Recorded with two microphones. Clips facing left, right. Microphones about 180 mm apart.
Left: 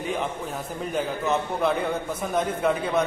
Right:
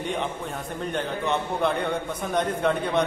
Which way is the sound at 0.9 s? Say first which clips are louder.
Left 2 dB; 5° left (ahead or behind).